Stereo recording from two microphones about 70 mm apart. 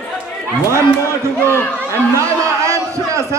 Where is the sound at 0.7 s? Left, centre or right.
Right.